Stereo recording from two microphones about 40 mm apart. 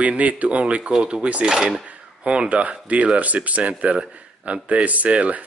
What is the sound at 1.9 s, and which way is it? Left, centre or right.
Drawer open or close, right.